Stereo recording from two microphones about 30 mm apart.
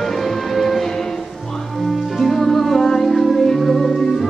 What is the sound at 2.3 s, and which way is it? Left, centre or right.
Music, centre.